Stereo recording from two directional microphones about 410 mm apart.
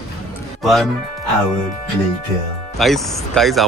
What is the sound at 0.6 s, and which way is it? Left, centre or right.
Speech, centre.